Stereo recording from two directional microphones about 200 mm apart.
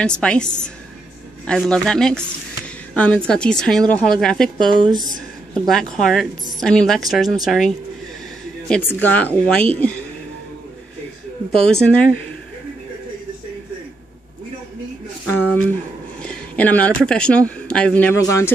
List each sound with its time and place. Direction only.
0.0 s a woman's voice: 5° left (ahead or behind)
4.8 s a woman's voice: 20° right (ahead or behind)
5.5 s a woman's voice: 5° left (ahead or behind)
11.5 s a woman's voice: 5° left (ahead or behind)
15.2 s a sound: 10° left (ahead or behind)
16.2 s a woman's voice: 5° left (ahead or behind)